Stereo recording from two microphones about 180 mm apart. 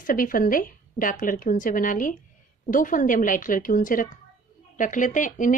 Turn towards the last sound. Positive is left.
turn(degrees=45)  # may be behind; listen again after turning